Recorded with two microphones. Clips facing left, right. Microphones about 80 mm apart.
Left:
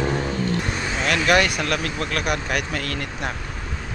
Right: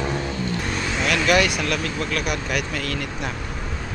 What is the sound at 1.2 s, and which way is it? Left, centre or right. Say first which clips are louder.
Speech: left 1 dB; left.